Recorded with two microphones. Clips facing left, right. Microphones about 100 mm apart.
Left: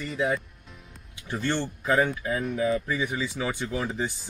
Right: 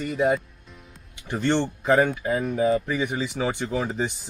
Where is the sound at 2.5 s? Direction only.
30° right (ahead or behind).